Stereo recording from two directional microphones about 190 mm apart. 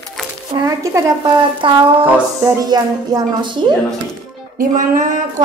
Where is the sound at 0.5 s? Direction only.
20° right (ahead or behind).